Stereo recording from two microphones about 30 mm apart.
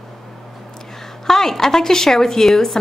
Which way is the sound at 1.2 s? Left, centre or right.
Centre.